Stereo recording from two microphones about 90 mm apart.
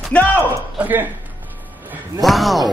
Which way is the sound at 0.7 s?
20° right (ahead or behind).